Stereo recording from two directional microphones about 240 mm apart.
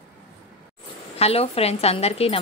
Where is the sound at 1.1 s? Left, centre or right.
Left.